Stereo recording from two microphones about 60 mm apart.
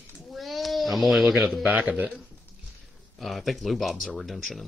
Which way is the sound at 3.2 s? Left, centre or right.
Centre.